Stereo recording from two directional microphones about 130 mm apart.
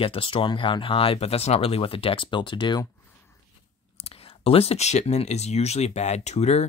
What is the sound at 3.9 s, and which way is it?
Speech, 50° left (ahead or behind).